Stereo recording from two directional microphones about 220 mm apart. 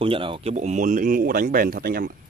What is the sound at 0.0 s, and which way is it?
Speech, 25° right (ahead or behind).